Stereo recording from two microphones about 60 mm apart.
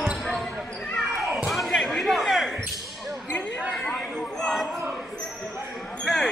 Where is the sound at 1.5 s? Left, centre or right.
Centre.